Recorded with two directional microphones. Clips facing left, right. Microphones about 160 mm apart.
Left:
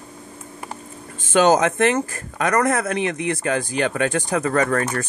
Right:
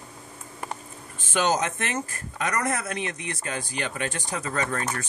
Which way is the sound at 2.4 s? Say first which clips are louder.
Left 8 dB; 50° left (ahead or behind).